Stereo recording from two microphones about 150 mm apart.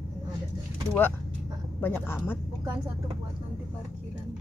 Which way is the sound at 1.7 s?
15° left (ahead or behind).